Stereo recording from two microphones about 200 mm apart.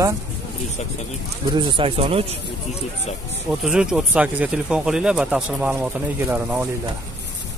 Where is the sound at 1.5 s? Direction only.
25° right (ahead or behind).